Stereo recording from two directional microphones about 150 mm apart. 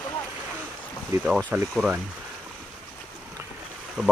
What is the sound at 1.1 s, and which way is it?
Speech, 20° right (ahead or behind).